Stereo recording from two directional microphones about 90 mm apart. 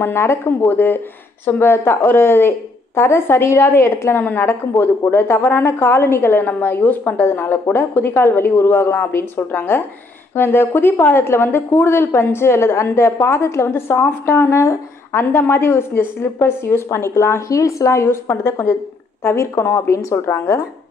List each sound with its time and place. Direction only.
0.0 s a woman's voice: 30° left (ahead or behind)
4.2 s a woman's voice: 15° left (ahead or behind)
4.5 s a woman's voice: 25° left (ahead or behind)